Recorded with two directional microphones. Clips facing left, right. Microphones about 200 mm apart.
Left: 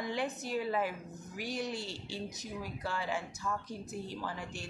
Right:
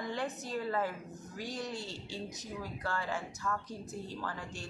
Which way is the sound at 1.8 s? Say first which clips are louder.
Left 1 dB; 20° right (ahead or behind).